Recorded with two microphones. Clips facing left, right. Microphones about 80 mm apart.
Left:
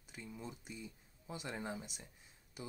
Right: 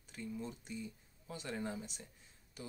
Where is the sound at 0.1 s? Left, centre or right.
Centre.